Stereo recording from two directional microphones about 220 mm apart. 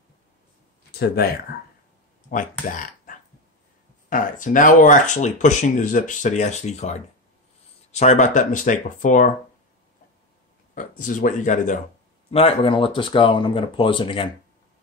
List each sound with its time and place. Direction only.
0.9 s speech: 45° left (ahead or behind)
4.1 s speech: 35° left (ahead or behind)
10.7 s speech: 35° left (ahead or behind)